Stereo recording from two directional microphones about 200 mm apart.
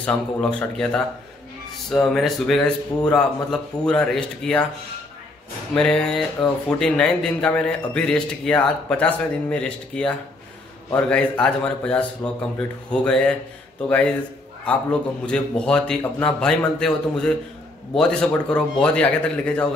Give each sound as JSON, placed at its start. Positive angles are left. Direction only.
{"t": 0.0, "sound": "speech", "side_deg": 5}
{"t": 5.8, "sound": "speech", "side_deg": 5}
{"t": 14.6, "sound": "speech", "side_deg": 5}